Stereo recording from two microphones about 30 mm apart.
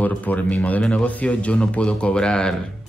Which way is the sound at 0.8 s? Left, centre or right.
Left.